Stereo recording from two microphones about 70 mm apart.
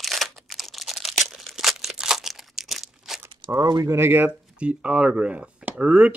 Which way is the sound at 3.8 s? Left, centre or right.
Right.